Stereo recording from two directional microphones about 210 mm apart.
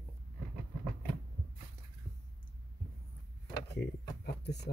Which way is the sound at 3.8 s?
50° left (ahead or behind).